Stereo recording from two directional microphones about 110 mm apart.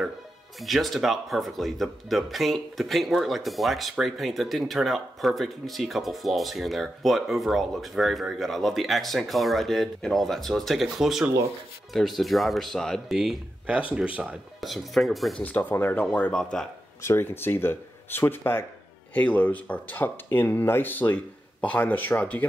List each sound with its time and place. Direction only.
0.6 s speech: centre (ahead or behind)
15.4 s speech: 15° left (ahead or behind)
17.0 s speech: 20° left (ahead or behind)